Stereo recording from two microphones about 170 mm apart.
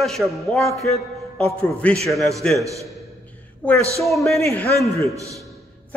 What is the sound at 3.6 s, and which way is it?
Speech, 5° left (ahead or behind).